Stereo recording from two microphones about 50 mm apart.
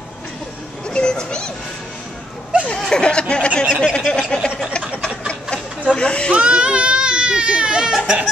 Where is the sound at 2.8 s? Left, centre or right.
Centre.